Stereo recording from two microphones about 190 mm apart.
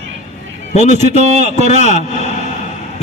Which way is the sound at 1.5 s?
35° left (ahead or behind).